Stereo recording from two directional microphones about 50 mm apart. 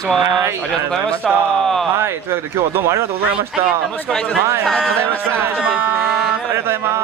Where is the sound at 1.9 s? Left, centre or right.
Right.